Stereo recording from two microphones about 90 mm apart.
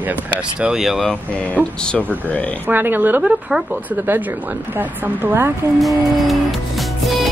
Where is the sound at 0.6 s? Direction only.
5° right (ahead or behind).